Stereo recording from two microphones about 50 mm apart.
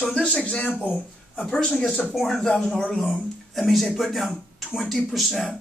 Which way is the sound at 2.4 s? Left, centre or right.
Centre.